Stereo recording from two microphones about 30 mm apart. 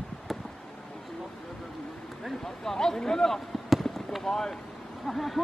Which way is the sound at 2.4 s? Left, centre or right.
Centre.